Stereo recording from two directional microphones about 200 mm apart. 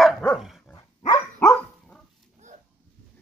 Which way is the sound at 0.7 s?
15° left (ahead or behind).